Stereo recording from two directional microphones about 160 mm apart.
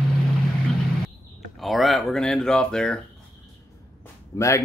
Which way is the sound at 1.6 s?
Centre (ahead or behind).